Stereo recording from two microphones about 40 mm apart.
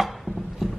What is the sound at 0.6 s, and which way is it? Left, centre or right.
Clip-clop, centre.